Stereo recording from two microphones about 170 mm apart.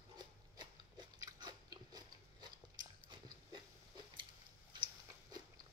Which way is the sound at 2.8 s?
25° right (ahead or behind).